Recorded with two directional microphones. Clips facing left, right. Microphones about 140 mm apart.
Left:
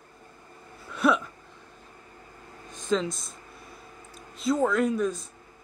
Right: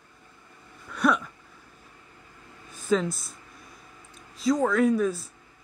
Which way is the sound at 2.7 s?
5° right (ahead or behind).